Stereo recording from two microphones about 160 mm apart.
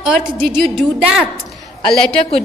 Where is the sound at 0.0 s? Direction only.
5° right (ahead or behind).